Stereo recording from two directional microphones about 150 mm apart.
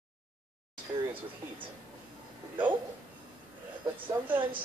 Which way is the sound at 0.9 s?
35° right (ahead or behind).